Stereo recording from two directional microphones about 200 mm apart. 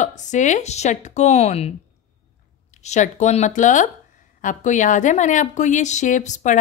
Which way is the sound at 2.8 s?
35° left (ahead or behind).